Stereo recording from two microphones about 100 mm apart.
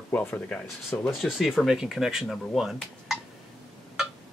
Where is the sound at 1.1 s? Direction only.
5° right (ahead or behind).